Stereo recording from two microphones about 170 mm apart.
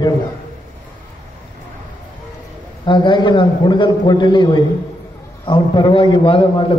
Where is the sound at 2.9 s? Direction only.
25° left (ahead or behind).